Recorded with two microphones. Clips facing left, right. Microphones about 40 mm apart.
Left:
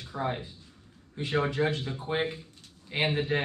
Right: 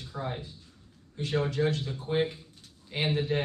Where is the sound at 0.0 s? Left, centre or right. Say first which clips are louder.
Left 4 dB; left.